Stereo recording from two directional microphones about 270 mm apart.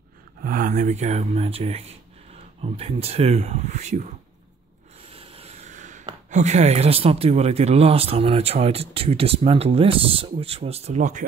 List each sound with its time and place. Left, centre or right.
0.4 s speech: right